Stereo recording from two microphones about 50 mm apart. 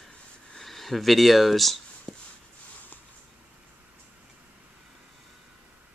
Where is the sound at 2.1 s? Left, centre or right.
Centre.